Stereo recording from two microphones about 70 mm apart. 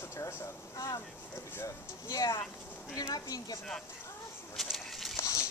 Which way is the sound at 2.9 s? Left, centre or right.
Left.